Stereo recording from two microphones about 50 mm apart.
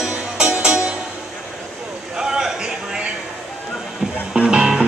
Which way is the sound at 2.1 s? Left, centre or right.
Centre.